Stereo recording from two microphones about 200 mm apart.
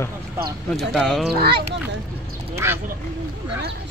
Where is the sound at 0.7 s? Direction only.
Centre (ahead or behind).